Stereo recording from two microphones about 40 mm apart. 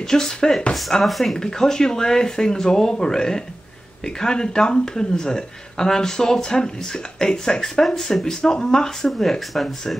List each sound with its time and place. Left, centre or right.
0.1 s speech: centre